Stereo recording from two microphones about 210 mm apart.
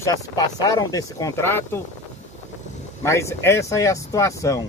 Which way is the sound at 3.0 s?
15° left (ahead or behind).